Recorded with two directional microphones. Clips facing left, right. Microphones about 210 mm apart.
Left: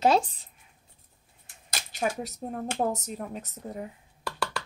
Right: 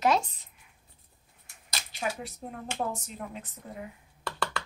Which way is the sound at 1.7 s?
50° left (ahead or behind).